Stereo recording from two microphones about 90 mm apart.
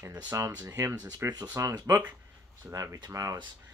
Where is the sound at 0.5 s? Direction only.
45° right (ahead or behind).